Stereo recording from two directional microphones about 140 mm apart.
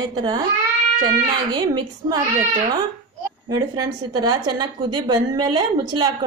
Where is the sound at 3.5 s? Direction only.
30° right (ahead or behind).